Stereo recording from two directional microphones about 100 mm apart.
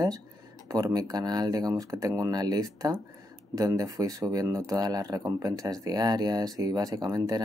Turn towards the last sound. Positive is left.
turn(degrees=-40)  # may be behind; listen again after turning